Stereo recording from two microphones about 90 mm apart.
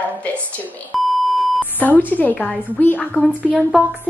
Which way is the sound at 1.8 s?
20° left (ahead or behind).